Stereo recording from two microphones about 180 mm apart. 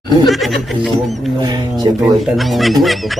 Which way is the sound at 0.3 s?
Centre (ahead or behind).